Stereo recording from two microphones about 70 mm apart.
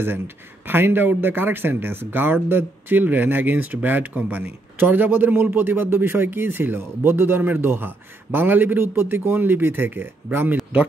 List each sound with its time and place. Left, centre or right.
0.7 s speech: right